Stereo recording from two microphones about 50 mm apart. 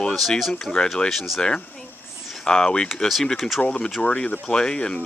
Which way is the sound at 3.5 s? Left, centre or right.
Left.